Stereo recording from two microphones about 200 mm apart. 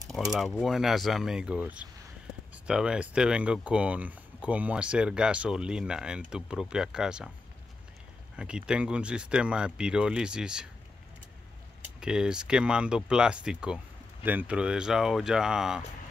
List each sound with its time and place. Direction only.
0.1 s speech: centre (ahead or behind)
8.4 s speech: 5° right (ahead or behind)
12.0 s speech: 5° right (ahead or behind)